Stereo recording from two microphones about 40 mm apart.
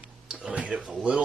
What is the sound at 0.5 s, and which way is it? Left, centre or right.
Speech, right.